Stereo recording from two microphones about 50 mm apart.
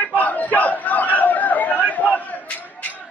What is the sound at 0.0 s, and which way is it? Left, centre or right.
Chatter, left.